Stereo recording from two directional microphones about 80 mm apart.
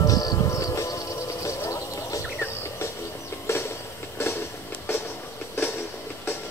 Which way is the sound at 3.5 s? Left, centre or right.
Left.